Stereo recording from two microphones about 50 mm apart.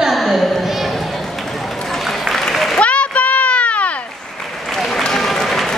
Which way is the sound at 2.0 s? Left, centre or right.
Centre.